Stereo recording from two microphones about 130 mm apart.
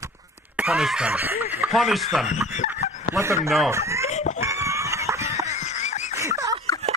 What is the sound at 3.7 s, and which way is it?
Chicken, 20° right (ahead or behind).